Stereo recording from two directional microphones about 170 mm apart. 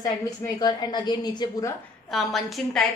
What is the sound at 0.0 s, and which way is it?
A woman's voice, 25° left (ahead or behind).